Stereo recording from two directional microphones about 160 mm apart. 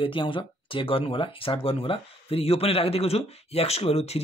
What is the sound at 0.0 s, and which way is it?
Speech, 30° left (ahead or behind).